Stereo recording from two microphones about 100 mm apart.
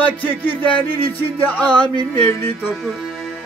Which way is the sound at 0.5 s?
60° left (ahead or behind).